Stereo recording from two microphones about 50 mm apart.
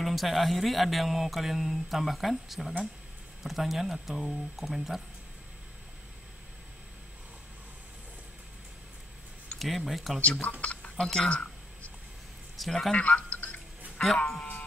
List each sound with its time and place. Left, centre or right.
0.0 s speech: centre
9.6 s speech: centre
10.6 s speech: left
11.0 s a sound: centre
12.6 s speech: centre
12.9 s a sound: left
14.1 s speech: centre